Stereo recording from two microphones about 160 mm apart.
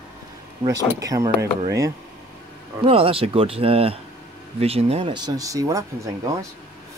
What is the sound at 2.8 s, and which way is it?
Speech, 35° right (ahead or behind).